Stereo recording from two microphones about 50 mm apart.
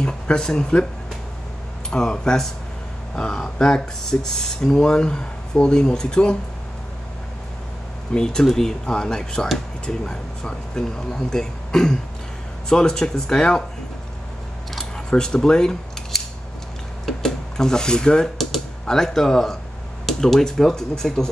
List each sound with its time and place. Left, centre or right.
0.0 s speech: centre
1.9 s speech: centre
8.1 s speech: centre
15.0 s speech: centre
16.1 s scissors: centre
17.0 s a sound: centre
18.4 s speech: centre